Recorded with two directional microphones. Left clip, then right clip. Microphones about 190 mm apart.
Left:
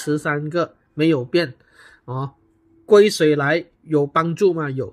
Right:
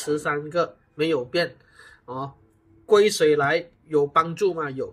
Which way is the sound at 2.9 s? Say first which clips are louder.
Left 4 dB; 60° left (ahead or behind).